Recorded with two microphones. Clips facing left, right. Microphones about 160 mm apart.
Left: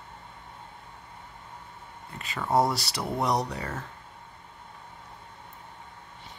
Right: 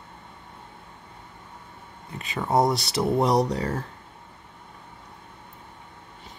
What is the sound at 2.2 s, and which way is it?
Speech, 20° right (ahead or behind).